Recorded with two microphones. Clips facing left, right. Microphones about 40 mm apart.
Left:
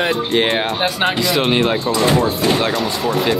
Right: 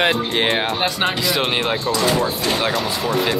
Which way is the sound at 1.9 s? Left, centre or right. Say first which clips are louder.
Left 2 dB; centre.